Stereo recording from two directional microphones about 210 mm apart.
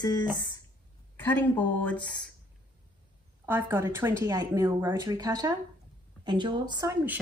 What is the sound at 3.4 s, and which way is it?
A woman's voice, 10° right (ahead or behind).